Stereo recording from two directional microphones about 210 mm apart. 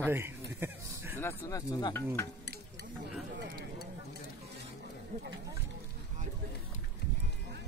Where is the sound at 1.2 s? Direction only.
15° left (ahead or behind).